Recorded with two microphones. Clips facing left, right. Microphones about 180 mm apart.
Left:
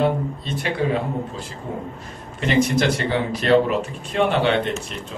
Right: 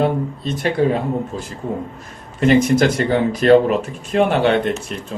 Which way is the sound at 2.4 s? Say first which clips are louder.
Right 5 dB; 45° right (ahead or behind).